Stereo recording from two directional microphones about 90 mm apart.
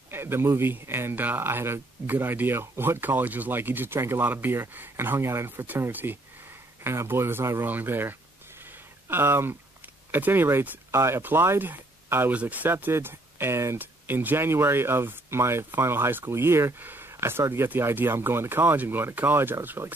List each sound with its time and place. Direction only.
0.1 s speech: 25° right (ahead or behind)